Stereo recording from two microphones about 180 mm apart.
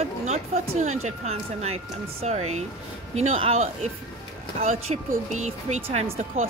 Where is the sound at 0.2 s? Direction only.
40° right (ahead or behind).